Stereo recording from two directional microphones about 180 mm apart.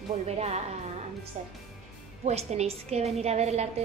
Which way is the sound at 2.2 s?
35° right (ahead or behind).